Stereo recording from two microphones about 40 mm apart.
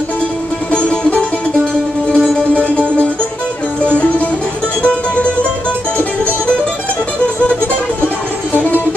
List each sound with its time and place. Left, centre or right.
0.7 s music: left
2.0 s music: centre
8.5 s music: left